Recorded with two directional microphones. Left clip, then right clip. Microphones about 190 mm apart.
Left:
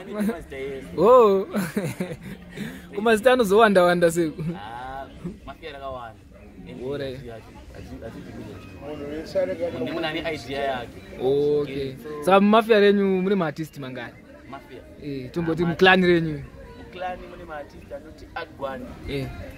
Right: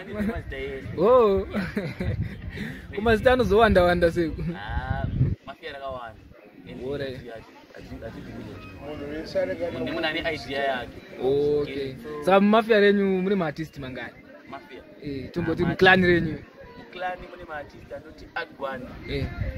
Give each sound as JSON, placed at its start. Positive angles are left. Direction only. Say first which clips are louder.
{"t": 0.0, "sound": "speech", "louder": "left 2 dB", "side_deg": 5}
{"t": 5.5, "sound": "a sound", "louder": "left 4 dB", "side_deg": 0}
{"t": 6.8, "sound": "speech", "louder": "left 1 dB", "side_deg": 5}
{"t": 9.2, "sound": "a man's voice", "louder": "left 2 dB", "side_deg": 20}
{"t": 9.8, "sound": "speech", "louder": "even", "side_deg": 5}